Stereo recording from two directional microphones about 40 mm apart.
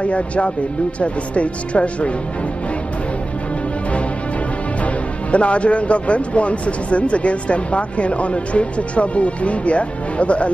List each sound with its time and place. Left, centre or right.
0.0 s speech: left
5.3 s speech: left